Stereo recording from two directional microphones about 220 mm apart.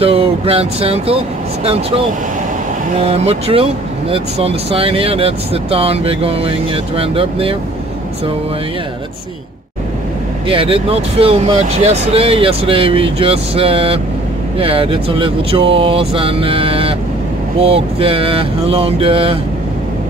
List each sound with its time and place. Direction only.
0.0 s speech: 25° right (ahead or behind)
10.5 s speech: 25° right (ahead or behind)